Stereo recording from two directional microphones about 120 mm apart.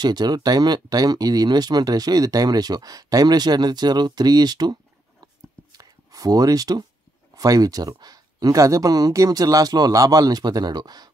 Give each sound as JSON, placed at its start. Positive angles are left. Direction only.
{"t": 0.0, "sound": "speech", "side_deg": -35}
{"t": 5.7, "sound": "a sound", "side_deg": -30}
{"t": 7.3, "sound": "speech", "side_deg": -30}